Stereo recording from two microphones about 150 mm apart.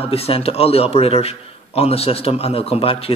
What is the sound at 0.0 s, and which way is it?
A man's voice, 40° left (ahead or behind).